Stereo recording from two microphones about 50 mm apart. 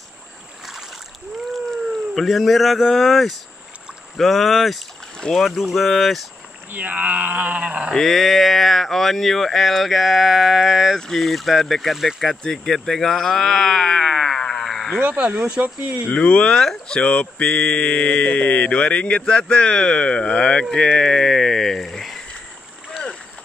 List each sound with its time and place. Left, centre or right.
1.5 s a sound: centre
2.2 s speech: centre
6.7 s speech: right
7.9 s speech: centre
11.0 s speech: centre
15.0 s speech: right
15.6 s speech: right
16.1 s speech: left